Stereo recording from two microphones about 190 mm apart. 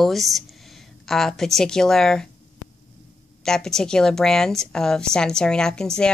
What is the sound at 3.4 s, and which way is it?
Speech, 5° left (ahead or behind).